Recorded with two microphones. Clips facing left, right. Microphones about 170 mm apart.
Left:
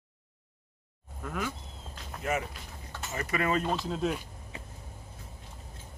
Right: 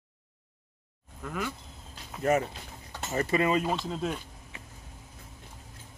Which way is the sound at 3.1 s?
30° right (ahead or behind).